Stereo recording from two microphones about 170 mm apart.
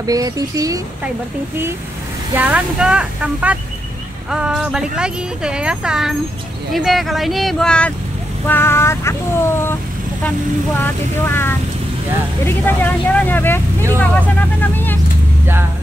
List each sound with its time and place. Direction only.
0.0 s speech: 20° right (ahead or behind)
2.3 s speech: 10° right (ahead or behind); by 9.8 s 15° left (ahead or behind)
10.8 s speech: 15° left (ahead or behind)